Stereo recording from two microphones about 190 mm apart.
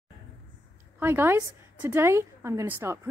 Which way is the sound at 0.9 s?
10° right (ahead or behind).